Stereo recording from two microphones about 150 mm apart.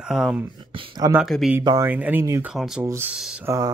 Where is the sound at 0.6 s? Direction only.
35° right (ahead or behind).